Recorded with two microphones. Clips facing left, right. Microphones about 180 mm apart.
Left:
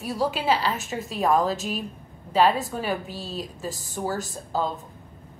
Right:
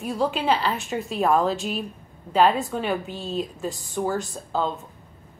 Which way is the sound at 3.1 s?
35° left (ahead or behind).